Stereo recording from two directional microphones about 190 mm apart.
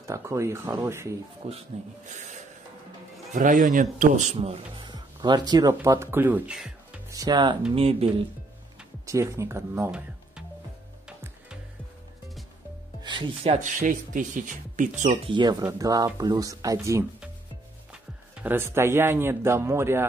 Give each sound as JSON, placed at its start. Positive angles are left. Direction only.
{"t": 0.0, "sound": "speech", "side_deg": -15}
{"t": 1.4, "sound": "a man's voice", "side_deg": -35}
{"t": 7.1, "sound": "a man's voice", "side_deg": -20}
{"t": 9.0, "sound": "speech", "side_deg": -15}
{"t": 11.1, "sound": "music", "side_deg": -5}
{"t": 13.0, "sound": "speech", "side_deg": -25}
{"t": 15.2, "sound": "a man's voice", "side_deg": -25}
{"t": 18.4, "sound": "speech", "side_deg": -10}